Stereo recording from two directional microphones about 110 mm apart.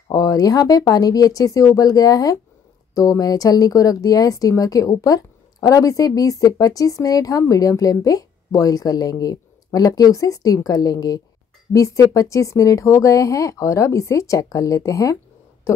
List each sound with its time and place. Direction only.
0.1 s speech: 35° left (ahead or behind)